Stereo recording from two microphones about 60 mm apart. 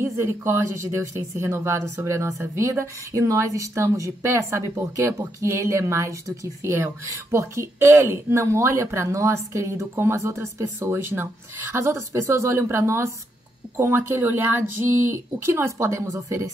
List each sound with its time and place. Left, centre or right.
0.0 s speech: right
11.7 s speech: right
13.9 s speech: right